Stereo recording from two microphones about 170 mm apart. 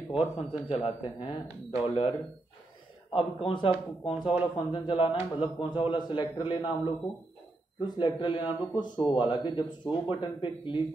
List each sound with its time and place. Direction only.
0.2 s a man's voice: 35° left (ahead or behind)
3.2 s a man's voice: 30° left (ahead or behind)
7.8 s speech: 30° left (ahead or behind)